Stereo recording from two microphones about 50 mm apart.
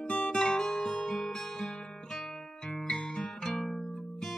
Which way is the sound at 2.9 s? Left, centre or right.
Centre.